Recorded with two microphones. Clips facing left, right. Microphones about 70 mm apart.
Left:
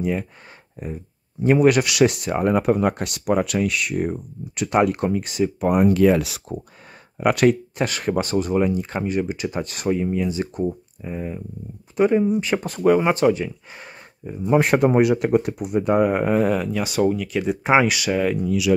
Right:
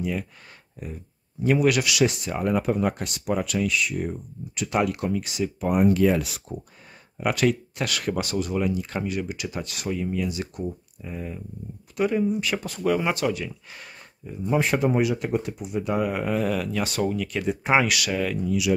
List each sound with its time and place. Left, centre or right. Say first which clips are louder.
0.0 s speech: left 5 dB; left
4.7 s speech: left 5 dB; left
5.7 s speech: left 3 dB; left
7.2 s speech: left 6 dB; left
7.4 s speech: left 4 dB; left
14.4 s speech: left 6 dB; left
16.7 s speech: left 5 dB; centre